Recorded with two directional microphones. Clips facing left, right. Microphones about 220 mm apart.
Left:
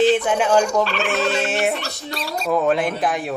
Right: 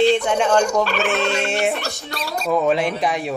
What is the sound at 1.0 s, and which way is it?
Fowl, centre (ahead or behind).